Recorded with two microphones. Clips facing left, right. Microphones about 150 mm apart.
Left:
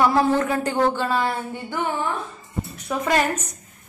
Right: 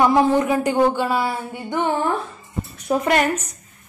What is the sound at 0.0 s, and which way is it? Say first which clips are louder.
A man's voice: right 3 dB; 15° right (ahead or behind).